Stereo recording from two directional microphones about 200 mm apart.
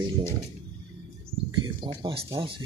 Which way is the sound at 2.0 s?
20° right (ahead or behind).